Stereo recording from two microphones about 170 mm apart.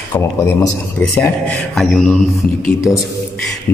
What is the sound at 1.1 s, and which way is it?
Speech, 15° left (ahead or behind).